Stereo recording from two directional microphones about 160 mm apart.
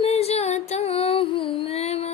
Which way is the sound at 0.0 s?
40° left (ahead or behind).